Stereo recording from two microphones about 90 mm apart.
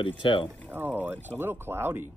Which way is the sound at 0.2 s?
70° left (ahead or behind).